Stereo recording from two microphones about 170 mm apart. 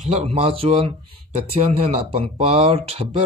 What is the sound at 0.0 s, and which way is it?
Speech, 40° right (ahead or behind).